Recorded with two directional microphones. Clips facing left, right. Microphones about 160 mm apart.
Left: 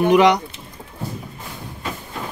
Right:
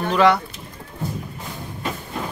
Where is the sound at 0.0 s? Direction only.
15° left (ahead or behind).